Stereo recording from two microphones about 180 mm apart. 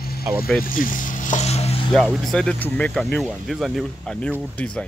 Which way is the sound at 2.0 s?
5° right (ahead or behind).